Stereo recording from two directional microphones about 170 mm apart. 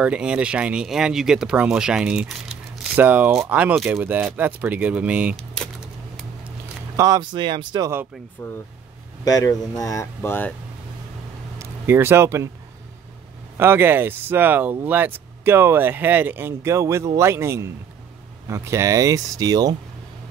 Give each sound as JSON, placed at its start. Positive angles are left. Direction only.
{"t": 0.0, "sound": "speech", "side_deg": -5}
{"t": 5.3, "sound": "a sound", "side_deg": 5}
{"t": 7.0, "sound": "speech", "side_deg": -20}
{"t": 8.4, "sound": "speech", "side_deg": 10}
{"t": 9.2, "sound": "speech", "side_deg": 20}
{"t": 11.5, "sound": "a sound", "side_deg": -15}
{"t": 13.6, "sound": "speech", "side_deg": -15}